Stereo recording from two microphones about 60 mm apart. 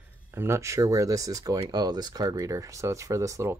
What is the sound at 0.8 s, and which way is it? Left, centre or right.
Speech, right.